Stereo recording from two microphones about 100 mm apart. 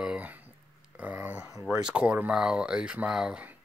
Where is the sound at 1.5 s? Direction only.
30° right (ahead or behind).